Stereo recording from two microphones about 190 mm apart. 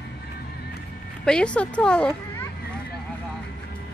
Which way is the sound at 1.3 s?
5° left (ahead or behind).